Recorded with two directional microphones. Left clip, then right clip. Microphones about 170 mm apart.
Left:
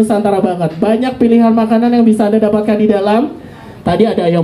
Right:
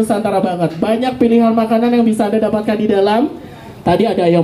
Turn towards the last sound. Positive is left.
turn(degrees=20)  # may be behind; listen again after turning